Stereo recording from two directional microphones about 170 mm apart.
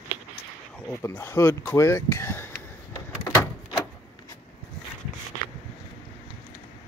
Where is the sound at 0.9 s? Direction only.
15° left (ahead or behind).